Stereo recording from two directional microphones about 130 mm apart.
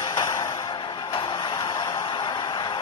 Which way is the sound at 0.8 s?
40° left (ahead or behind).